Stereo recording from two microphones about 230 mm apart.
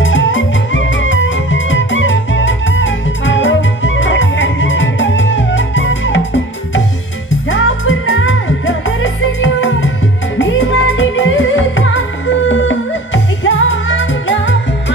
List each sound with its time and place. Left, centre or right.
0.0 s music: left
7.4 s music: left